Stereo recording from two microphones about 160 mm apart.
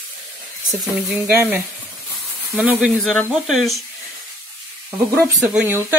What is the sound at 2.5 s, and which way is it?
Speech, 5° right (ahead or behind).